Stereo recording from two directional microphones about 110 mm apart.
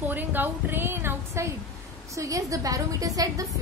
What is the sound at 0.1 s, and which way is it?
A woman's voice, 15° right (ahead or behind).